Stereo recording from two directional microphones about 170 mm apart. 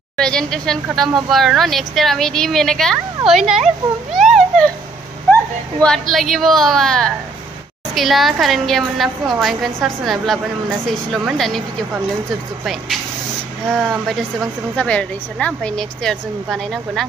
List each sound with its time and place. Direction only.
0.2 s speech: 5° left (ahead or behind)
4.1 s a sound: centre (ahead or behind)
5.8 s speech: centre (ahead or behind)
13.7 s speech: centre (ahead or behind)